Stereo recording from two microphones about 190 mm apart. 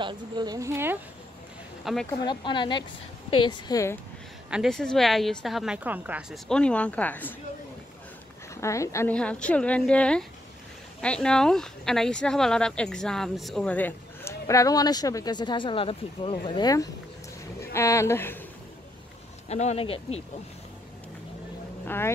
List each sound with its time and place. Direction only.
0.0 s speech: 20° right (ahead or behind)
2.0 s speech: 25° left (ahead or behind)
4.5 s speech: centre (ahead or behind)
6.4 s a woman's voice: 5° left (ahead or behind)
8.5 s a woman's voice: 15° left (ahead or behind)
19.5 s speech: 35° left (ahead or behind)
21.8 s a woman's voice: 10° left (ahead or behind)